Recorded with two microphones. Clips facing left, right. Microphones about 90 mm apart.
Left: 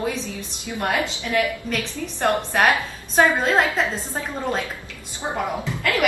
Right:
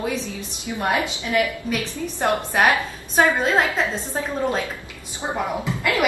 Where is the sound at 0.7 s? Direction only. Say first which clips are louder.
Right 1 dB; 20° right (ahead or behind).